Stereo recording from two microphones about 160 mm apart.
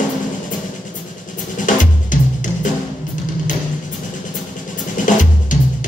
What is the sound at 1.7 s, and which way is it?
Drum, 55° left (ahead or behind).